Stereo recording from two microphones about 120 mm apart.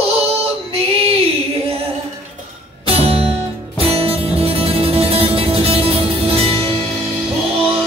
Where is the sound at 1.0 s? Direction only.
55° right (ahead or behind).